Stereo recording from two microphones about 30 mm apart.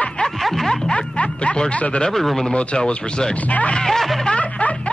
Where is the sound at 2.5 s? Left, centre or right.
Left.